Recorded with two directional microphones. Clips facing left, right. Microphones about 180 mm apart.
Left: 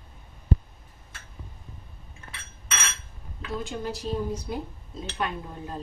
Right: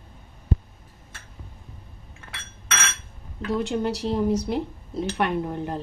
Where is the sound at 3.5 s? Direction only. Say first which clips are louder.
Right 7 dB; 75° right (ahead or behind).